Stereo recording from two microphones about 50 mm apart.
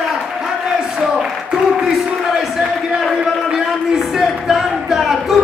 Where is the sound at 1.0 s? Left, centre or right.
Centre.